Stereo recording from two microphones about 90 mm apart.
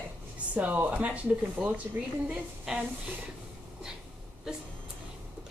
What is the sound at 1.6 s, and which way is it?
Speech, 5° right (ahead or behind).